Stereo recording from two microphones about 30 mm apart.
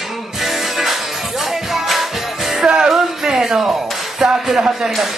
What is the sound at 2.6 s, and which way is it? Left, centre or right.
Music, right.